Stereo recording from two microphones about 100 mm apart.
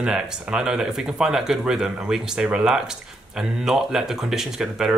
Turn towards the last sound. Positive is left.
turn(degrees=-5)  # may be behind; listen again after turning